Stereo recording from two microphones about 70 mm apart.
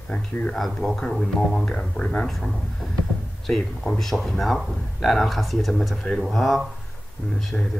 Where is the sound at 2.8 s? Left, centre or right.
Centre.